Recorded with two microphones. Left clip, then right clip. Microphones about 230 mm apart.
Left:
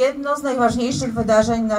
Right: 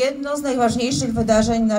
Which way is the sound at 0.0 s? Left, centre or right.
Right.